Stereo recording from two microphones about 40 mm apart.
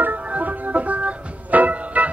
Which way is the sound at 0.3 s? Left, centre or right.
Right.